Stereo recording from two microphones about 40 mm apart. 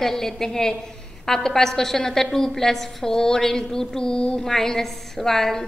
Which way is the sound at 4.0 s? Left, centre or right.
Left.